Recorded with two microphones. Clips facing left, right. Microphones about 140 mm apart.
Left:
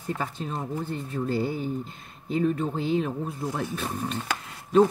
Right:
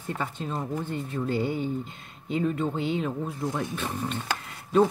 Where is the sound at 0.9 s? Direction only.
5° left (ahead or behind).